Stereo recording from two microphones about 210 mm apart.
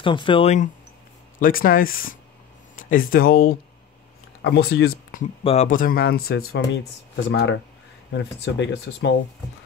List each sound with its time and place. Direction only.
0.0 s speech: 25° left (ahead or behind)
1.4 s speech: 40° left (ahead or behind)
5.4 s speech: 30° left (ahead or behind)
5.7 s speech: 40° left (ahead or behind)